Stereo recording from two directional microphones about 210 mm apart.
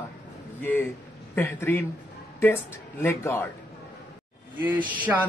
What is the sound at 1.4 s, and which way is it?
Speech, 10° left (ahead or behind).